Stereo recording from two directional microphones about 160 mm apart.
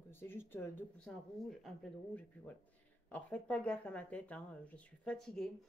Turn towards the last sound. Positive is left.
turn(degrees=5)  # may be behind; listen again after turning